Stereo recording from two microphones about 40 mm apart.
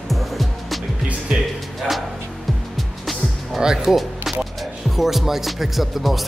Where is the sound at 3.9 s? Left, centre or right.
Centre.